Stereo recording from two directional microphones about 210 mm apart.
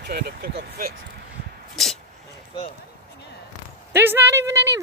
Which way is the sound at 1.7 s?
Centre (ahead or behind).